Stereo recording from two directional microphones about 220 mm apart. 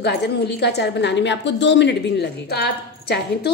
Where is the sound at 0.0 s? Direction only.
50° left (ahead or behind).